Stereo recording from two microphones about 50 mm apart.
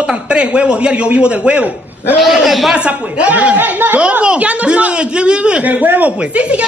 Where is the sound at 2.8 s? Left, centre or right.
Right.